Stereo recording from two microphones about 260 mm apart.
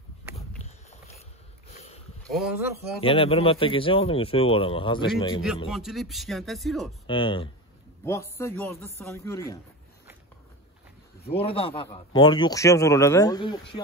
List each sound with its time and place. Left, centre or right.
2.3 s speech: centre
3.0 s a man's voice: centre
5.7 s speech: centre
7.1 s a man's voice: centre
11.2 s a man's voice: left